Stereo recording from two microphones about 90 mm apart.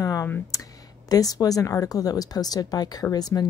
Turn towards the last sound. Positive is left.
turn(degrees=45)  # may be behind; listen again after turning